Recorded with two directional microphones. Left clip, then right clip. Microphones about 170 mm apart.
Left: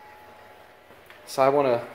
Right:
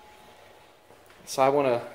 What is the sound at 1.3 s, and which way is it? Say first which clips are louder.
Speech: left 2 dB; 5° right (ahead or behind).